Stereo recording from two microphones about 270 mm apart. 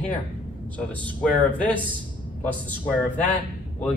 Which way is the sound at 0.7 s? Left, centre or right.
Centre.